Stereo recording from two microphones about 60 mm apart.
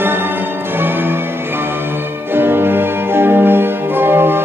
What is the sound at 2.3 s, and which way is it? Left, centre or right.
Music, right.